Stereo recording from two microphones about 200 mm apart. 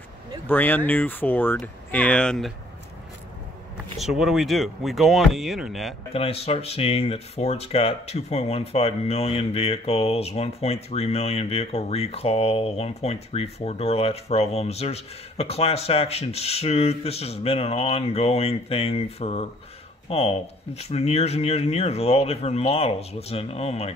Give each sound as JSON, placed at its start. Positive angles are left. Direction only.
{"t": 0.5, "sound": "speech", "side_deg": 10}
{"t": 4.0, "sound": "speech", "side_deg": 0}
{"t": 6.1, "sound": "speech", "side_deg": 30}